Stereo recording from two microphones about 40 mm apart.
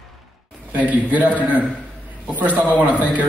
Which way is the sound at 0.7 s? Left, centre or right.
Right.